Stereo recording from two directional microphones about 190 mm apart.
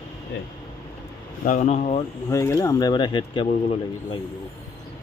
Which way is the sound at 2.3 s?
15° left (ahead or behind).